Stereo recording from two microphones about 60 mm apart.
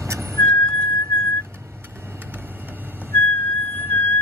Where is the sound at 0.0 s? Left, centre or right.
Right.